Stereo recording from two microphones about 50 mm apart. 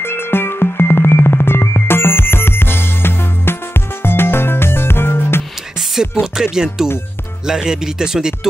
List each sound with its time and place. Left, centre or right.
0.0 s music: left
6.2 s speech: centre